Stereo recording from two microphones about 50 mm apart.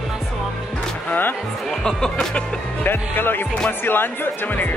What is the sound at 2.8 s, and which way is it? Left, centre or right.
Speech, left.